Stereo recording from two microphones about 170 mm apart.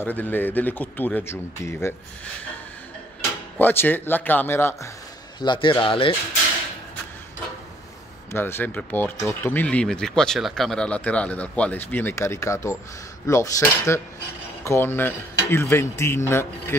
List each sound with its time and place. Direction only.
0.0 s speech: 10° left (ahead or behind)
3.5 s speech: 10° left (ahead or behind)
5.4 s speech: 25° left (ahead or behind)
8.3 s speech: 15° left (ahead or behind)